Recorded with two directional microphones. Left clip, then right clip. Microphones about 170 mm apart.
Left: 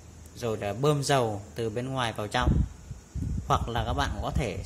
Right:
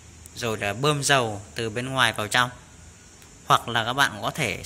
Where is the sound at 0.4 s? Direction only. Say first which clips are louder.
Right 3 dB; 5° left (ahead or behind).